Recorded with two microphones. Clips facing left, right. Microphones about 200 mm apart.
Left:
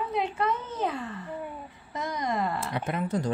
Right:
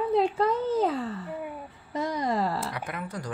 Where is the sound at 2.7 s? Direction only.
25° left (ahead or behind).